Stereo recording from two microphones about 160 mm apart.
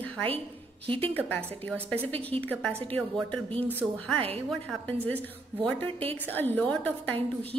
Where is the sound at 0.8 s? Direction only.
35° right (ahead or behind).